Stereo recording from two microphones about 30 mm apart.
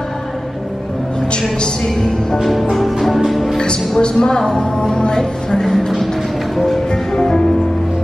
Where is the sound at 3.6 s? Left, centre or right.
Left.